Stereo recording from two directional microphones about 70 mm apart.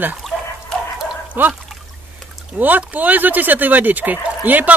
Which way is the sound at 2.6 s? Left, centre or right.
Right.